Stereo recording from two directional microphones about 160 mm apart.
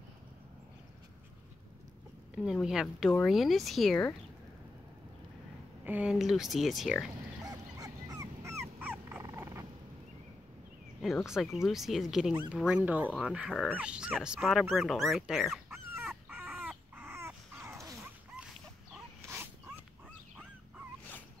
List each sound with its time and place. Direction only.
2.3 s speech: 5° right (ahead or behind)
5.9 s speech: 5° right (ahead or behind)
7.4 s dog: 20° right (ahead or behind)
8.7 s dog: 10° right (ahead or behind)
9.2 s frog: 20° right (ahead or behind)
11.0 s speech: centre (ahead or behind)
16.3 s dog: 10° right (ahead or behind)
18.9 s dog: 10° right (ahead or behind)